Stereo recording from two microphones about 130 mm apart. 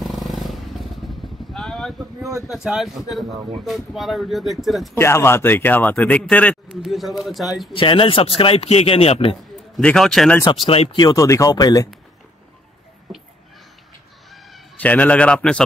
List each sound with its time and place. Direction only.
0.0 s motorcycle: centre (ahead or behind)
2.5 s speech: 5° right (ahead or behind)
4.9 s speech: 20° left (ahead or behind)
6.8 s speech: centre (ahead or behind)
7.7 s a man's voice: 45° left (ahead or behind)
9.8 s speech: 5° left (ahead or behind)
10.4 s a man's voice: 40° left (ahead or behind)
11.0 s speech: 30° left (ahead or behind)
14.8 s speech: 10° left (ahead or behind)